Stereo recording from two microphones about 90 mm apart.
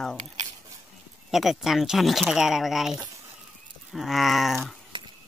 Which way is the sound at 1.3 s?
5° right (ahead or behind).